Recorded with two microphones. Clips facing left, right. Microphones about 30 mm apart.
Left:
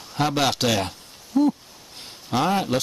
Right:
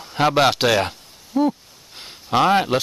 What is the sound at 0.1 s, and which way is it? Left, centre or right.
Speech, right.